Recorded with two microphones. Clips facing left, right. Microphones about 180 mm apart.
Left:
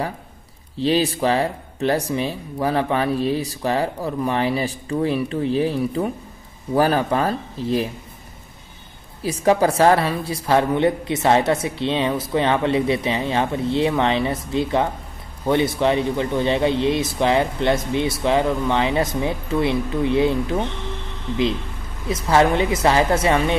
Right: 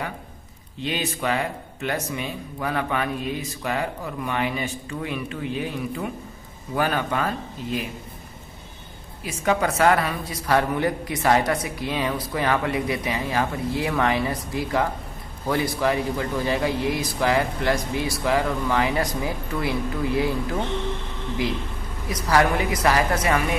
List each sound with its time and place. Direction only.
0.7 s speech: 35° left (ahead or behind)
9.2 s speech: 35° left (ahead or behind)
22.1 s speech: 25° left (ahead or behind)